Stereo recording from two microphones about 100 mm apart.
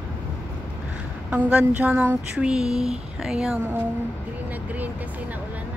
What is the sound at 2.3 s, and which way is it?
Speech, 5° right (ahead or behind).